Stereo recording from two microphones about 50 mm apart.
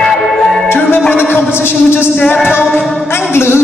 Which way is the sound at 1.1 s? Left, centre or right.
Left.